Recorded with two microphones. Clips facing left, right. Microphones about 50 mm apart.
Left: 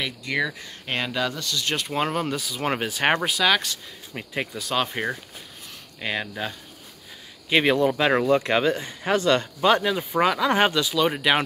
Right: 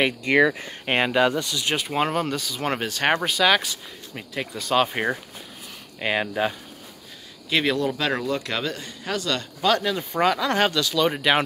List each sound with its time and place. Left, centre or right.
0.0 s speech: right; by 2.0 s centre
2.0 s speech: centre
4.1 s speech: centre
4.6 s speech: centre
4.8 s speech: centre
7.4 s speech: left; by 11.4 s centre